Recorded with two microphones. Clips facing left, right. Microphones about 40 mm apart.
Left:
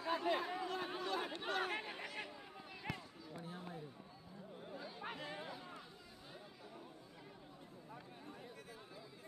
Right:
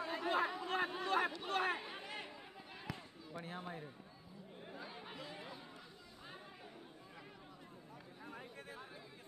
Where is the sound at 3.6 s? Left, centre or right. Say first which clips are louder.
Right 2 dB; right.